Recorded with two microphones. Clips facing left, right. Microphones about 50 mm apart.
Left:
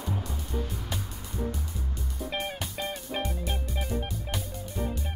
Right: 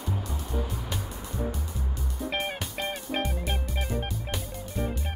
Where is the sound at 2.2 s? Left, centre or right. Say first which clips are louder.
Right 2 dB; right.